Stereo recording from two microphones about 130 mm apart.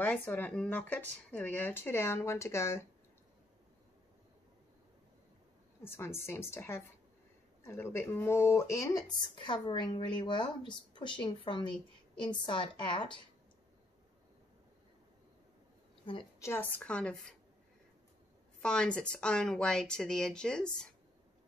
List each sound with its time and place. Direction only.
0.3 s speech: 10° left (ahead or behind)
5.9 s speech: 20° left (ahead or behind); by 13.2 s 40° left (ahead or behind)
16.3 s speech: 20° left (ahead or behind)
18.6 s speech: 5° left (ahead or behind)